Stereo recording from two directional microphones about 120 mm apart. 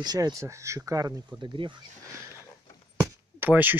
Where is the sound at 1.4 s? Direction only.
40° right (ahead or behind).